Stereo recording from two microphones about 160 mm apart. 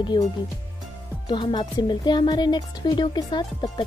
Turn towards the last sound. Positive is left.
turn(degrees=25)  # may be behind; listen again after turning